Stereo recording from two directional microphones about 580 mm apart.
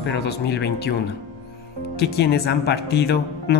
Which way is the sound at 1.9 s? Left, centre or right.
Centre.